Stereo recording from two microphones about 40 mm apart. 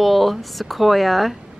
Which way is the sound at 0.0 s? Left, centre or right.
Centre.